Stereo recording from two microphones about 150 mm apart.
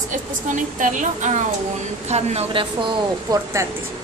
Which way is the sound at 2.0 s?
45° right (ahead or behind).